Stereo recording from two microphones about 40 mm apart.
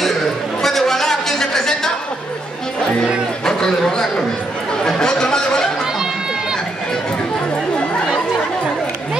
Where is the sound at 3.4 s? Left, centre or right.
Centre.